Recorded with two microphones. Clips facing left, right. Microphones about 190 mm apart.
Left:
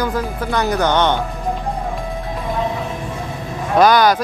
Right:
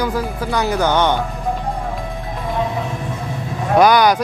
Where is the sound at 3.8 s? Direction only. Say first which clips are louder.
Even; 15° right (ahead or behind).